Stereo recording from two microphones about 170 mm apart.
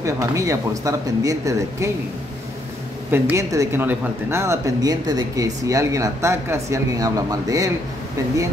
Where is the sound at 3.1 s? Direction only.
15° right (ahead or behind).